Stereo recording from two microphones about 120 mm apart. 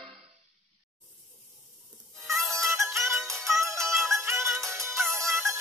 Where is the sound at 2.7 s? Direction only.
25° right (ahead or behind).